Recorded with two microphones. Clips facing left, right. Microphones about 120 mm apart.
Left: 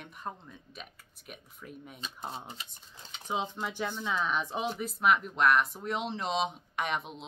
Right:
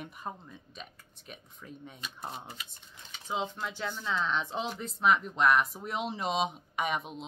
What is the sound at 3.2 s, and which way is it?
Speech, 15° left (ahead or behind).